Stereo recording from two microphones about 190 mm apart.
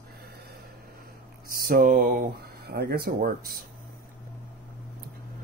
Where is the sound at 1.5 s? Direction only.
50° right (ahead or behind).